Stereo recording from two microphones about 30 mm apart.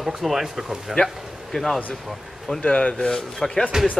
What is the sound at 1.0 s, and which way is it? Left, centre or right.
Speech, left.